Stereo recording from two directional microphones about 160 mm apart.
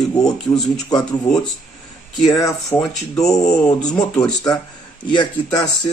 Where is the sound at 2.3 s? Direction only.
20° left (ahead or behind).